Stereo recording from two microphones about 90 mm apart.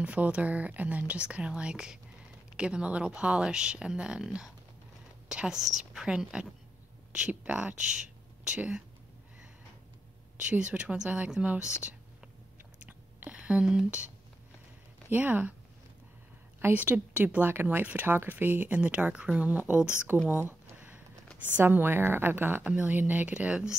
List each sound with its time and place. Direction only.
0.0 s a woman's voice: 15° right (ahead or behind)
10.3 s a woman's voice: 15° right (ahead or behind)
12.8 s whispering: 15° right (ahead or behind)
15.0 s speech: 20° right (ahead or behind)
16.7 s speech: 20° right (ahead or behind)
20.2 s a sound: 20° right (ahead or behind)
21.5 s a woman's voice: 20° right (ahead or behind)